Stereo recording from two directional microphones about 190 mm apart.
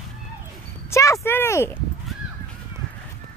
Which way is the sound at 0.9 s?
15° left (ahead or behind).